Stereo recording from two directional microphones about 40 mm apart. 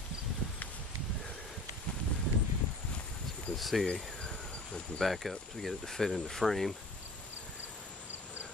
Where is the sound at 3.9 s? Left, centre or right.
Left.